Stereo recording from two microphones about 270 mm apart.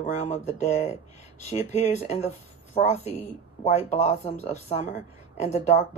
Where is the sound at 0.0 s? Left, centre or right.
Left.